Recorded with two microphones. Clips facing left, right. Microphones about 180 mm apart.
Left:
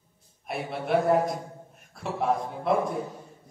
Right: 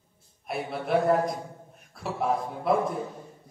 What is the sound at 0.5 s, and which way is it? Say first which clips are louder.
Speech: even; centre (ahead or behind).